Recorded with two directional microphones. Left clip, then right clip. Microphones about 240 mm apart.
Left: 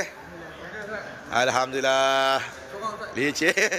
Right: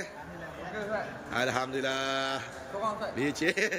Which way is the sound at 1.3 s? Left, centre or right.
Centre.